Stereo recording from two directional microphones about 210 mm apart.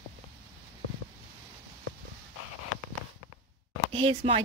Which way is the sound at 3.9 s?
25° right (ahead or behind).